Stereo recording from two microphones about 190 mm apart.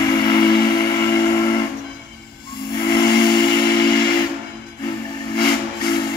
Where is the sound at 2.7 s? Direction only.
20° left (ahead or behind).